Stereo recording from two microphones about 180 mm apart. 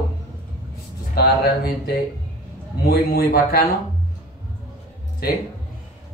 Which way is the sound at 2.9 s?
55° left (ahead or behind).